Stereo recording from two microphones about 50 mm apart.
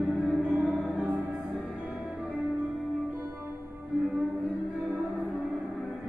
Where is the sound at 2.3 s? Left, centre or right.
Centre.